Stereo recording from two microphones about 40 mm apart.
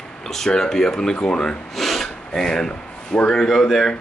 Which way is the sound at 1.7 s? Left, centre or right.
Centre.